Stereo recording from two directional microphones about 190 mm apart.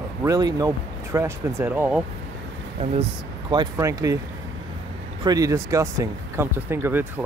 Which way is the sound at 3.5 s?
20° right (ahead or behind).